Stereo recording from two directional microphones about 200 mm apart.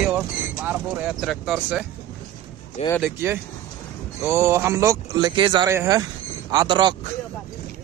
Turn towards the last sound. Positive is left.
turn(degrees=-20)  # may be behind; listen again after turning